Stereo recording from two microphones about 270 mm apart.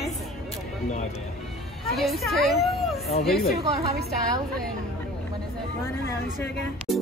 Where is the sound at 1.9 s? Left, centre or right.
Centre.